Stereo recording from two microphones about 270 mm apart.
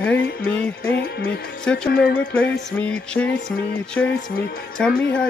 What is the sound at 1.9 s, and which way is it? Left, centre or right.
Speech, left.